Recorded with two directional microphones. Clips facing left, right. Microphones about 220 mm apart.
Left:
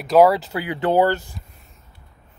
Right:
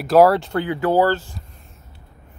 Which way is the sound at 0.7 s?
20° left (ahead or behind).